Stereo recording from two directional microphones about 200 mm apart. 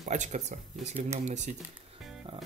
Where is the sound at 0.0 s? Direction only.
35° right (ahead or behind).